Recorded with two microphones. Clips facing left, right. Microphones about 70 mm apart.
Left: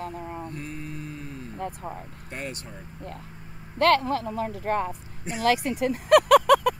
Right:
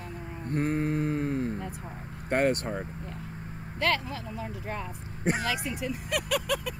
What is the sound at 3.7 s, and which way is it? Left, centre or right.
Speech, left.